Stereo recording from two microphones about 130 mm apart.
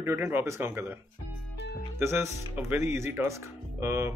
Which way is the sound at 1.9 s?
20° right (ahead or behind).